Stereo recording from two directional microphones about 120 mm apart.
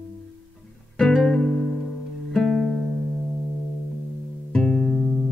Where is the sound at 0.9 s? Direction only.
5° left (ahead or behind).